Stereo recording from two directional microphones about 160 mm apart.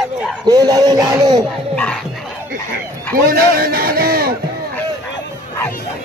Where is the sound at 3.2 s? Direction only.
65° right (ahead or behind).